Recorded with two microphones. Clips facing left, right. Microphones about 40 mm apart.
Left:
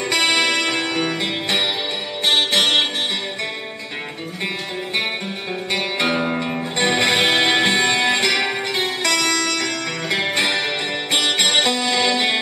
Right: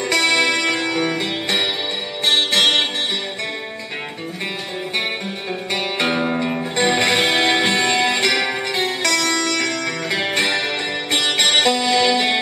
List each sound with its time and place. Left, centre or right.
0.0 s music: centre
6.0 s music: centre
9.0 s music: centre
9.3 s music: centre